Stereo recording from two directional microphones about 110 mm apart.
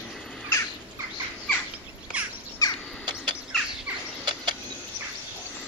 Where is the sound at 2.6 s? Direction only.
35° left (ahead or behind).